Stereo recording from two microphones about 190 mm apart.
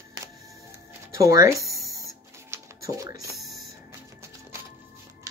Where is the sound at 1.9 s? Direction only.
15° right (ahead or behind).